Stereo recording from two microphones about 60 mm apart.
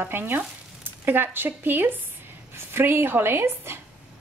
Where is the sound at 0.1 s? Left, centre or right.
Right.